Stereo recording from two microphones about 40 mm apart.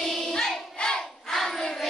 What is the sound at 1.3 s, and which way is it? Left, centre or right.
Crowd, centre.